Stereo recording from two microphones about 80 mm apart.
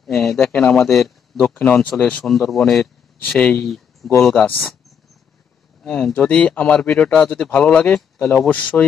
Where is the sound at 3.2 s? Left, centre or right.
Centre.